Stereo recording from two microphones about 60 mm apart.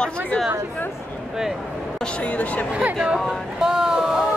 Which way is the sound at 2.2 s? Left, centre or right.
Left.